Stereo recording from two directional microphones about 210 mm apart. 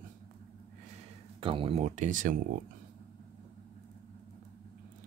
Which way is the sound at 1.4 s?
25° right (ahead or behind).